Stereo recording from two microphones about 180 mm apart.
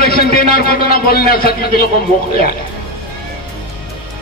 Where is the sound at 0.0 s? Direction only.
60° left (ahead or behind).